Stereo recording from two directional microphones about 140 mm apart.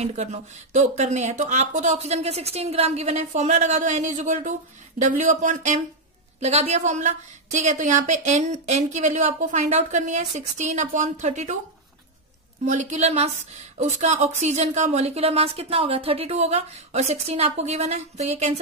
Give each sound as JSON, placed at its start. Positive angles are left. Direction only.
{"t": 0.0, "sound": "a woman's voice", "side_deg": -55}
{"t": 6.4, "sound": "a woman's voice", "side_deg": -45}
{"t": 12.6, "sound": "a woman's voice", "side_deg": -55}